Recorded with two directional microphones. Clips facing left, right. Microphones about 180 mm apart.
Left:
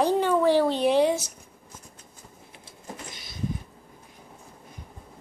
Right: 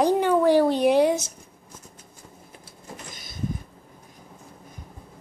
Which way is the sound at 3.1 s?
50° right (ahead or behind).